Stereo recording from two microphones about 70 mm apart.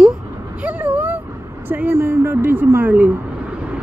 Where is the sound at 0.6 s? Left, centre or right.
Right.